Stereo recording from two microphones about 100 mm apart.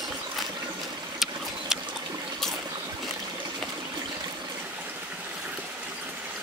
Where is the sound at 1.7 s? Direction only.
5° right (ahead or behind).